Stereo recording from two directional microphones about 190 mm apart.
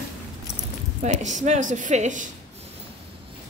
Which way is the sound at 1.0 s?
40° right (ahead or behind).